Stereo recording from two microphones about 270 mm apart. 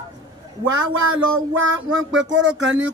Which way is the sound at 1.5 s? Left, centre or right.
Right.